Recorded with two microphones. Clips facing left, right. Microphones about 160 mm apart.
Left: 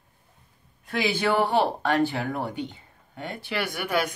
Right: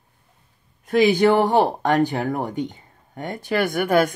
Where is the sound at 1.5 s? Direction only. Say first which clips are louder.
Right 5 dB; 45° right (ahead or behind).